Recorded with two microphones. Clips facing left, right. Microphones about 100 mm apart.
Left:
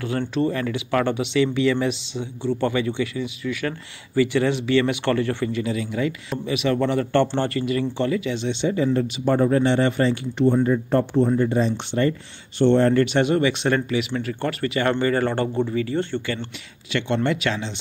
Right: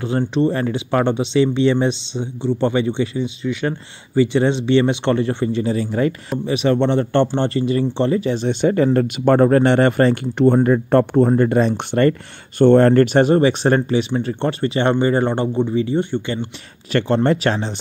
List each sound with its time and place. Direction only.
0.0 s speech: 25° right (ahead or behind)
0.5 s speech: 30° right (ahead or behind)
6.4 s speech: 35° right (ahead or behind); by 16.4 s 15° right (ahead or behind)
16.9 s speech: 35° right (ahead or behind)